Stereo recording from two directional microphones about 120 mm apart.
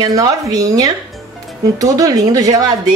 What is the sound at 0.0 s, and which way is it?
A woman's voice, 30° right (ahead or behind).